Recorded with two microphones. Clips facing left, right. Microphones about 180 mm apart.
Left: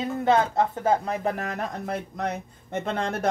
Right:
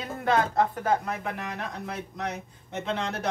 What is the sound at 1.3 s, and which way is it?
Speech, 45° left (ahead or behind).